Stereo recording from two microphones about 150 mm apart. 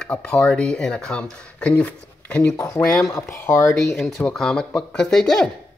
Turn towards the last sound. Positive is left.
turn(degrees=5)  # may be behind; listen again after turning